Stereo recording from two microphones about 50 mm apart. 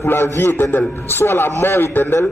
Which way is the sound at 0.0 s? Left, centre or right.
Left.